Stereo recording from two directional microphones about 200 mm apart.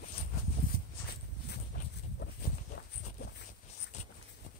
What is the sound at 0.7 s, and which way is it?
Dog, 50° left (ahead or behind).